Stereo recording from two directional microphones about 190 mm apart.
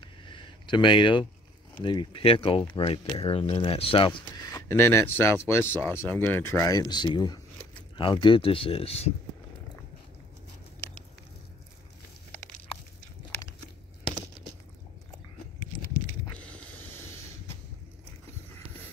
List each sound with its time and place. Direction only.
0.0 s a sound: 25° left (ahead or behind)
1.9 s speech: 25° left (ahead or behind)
4.5 s speech: 15° left (ahead or behind); by 9.1 s 30° left (ahead or behind)